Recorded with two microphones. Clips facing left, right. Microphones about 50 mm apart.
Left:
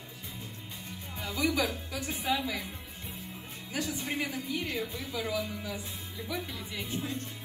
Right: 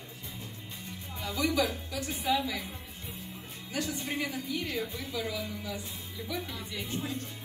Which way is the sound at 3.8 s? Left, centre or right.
Left.